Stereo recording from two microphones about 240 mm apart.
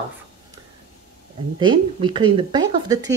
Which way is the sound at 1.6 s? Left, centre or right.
Centre.